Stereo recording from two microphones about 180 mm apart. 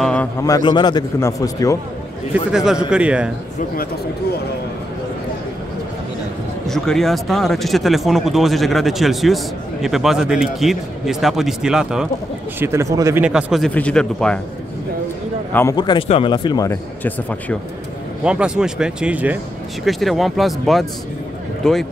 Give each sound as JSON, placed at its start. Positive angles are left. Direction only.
{"t": 0.0, "sound": "a sound", "side_deg": 5}
{"t": 0.4, "sound": "a man's voice", "side_deg": 20}
{"t": 2.5, "sound": "a man's voice", "side_deg": -5}
{"t": 6.7, "sound": "speech", "side_deg": 0}
{"t": 12.5, "sound": "a man's voice", "side_deg": -15}
{"t": 13.2, "sound": "speech", "side_deg": -5}
{"t": 15.7, "sound": "a man's voice", "side_deg": 25}
{"t": 18.2, "sound": "speech", "side_deg": -5}